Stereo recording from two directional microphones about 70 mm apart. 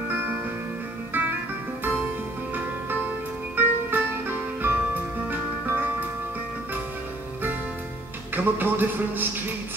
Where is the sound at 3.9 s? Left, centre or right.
Right.